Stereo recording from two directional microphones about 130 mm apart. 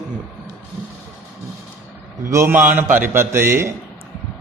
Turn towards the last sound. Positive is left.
turn(degrees=-20)  # may be behind; listen again after turning